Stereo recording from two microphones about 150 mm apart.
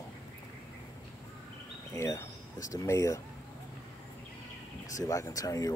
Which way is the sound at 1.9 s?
20° left (ahead or behind).